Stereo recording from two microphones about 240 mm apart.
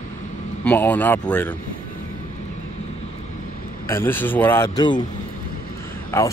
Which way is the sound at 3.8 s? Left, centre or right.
Centre.